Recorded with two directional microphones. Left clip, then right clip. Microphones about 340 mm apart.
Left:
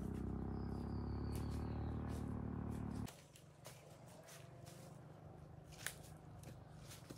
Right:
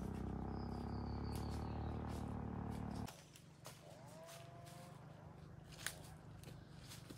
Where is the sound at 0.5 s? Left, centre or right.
Right.